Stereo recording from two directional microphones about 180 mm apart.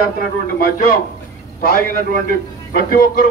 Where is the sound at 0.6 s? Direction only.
55° left (ahead or behind).